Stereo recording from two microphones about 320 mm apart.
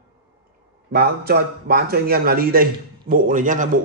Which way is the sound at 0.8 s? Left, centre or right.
Right.